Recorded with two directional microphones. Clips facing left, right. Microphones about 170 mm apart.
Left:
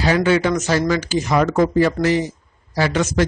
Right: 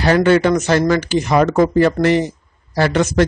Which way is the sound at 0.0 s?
60° right (ahead or behind).